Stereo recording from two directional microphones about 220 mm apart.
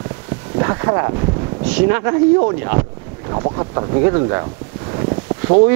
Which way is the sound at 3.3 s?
25° right (ahead or behind).